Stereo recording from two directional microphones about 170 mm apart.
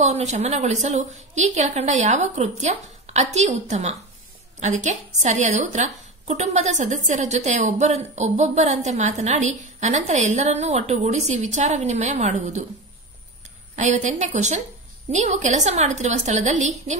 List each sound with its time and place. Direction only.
0.0 s a woman's voice: 40° right (ahead or behind)
13.7 s a woman's voice: 45° right (ahead or behind)